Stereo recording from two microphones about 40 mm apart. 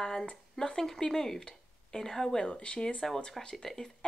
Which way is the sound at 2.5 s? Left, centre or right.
Left.